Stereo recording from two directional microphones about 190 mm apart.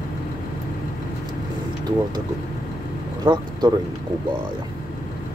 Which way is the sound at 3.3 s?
25° right (ahead or behind).